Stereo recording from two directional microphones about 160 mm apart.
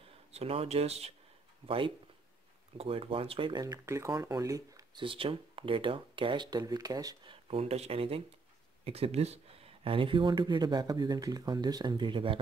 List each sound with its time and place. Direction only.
0.3 s speech: 40° right (ahead or behind)
2.8 s speech: 35° right (ahead or behind)
3.6 s speech: 20° right (ahead or behind)
7.4 s speech: 40° right (ahead or behind)